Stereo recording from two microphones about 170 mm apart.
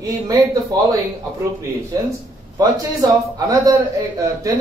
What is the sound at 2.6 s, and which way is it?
A man's voice, 20° right (ahead or behind).